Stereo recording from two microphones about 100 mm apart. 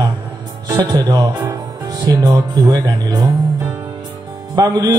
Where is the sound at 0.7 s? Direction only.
35° right (ahead or behind).